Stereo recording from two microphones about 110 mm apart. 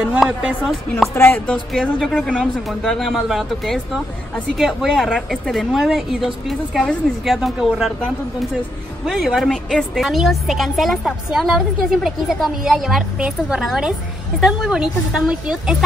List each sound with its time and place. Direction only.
0.1 s speech: 10° right (ahead or behind)
1.1 s chopping: 20° left (ahead or behind)
1.8 s a woman's voice: centre (ahead or behind)
9.0 s a woman's voice: centre (ahead or behind)